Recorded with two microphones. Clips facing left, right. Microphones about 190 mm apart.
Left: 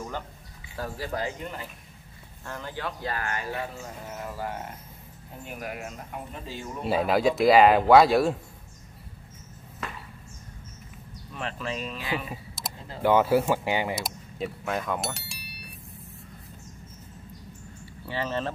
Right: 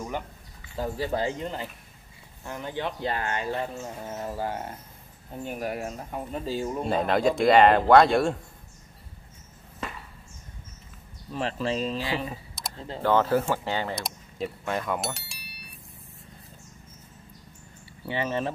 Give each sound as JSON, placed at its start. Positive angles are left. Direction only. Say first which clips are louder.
{"t": 0.7, "sound": "speech", "louder": "right 4 dB", "side_deg": -20}
{"t": 2.4, "sound": "speech", "louder": "right 3 dB", "side_deg": -20}
{"t": 6.8, "sound": "speech", "louder": "left 2 dB", "side_deg": 5}
{"t": 11.3, "sound": "speech", "louder": "right 5 dB", "side_deg": -35}
{"t": 12.6, "sound": "a sound", "louder": "left 1 dB", "side_deg": 0}
{"t": 13.0, "sound": "speech", "louder": "left 2 dB", "side_deg": 10}
{"t": 13.9, "sound": "speech", "louder": "left 1 dB", "side_deg": 0}
{"t": 18.0, "sound": "speech", "louder": "right 2 dB", "side_deg": -15}